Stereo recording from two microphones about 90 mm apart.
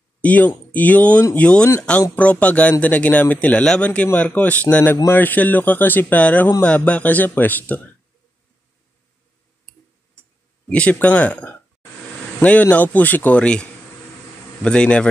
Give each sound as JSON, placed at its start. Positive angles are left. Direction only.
{"t": 0.2, "sound": "speech", "side_deg": 20}
{"t": 10.7, "sound": "speech", "side_deg": 15}